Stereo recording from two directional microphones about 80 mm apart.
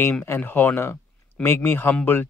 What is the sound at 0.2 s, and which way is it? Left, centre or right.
Speech, left.